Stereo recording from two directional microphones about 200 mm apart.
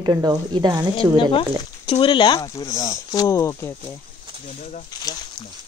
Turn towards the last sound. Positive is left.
turn(degrees=20)  # may be behind; listen again after turning